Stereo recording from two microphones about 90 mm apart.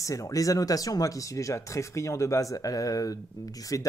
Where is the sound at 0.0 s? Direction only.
40° left (ahead or behind).